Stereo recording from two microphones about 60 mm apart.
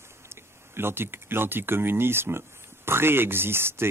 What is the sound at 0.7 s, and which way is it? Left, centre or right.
Speech, right.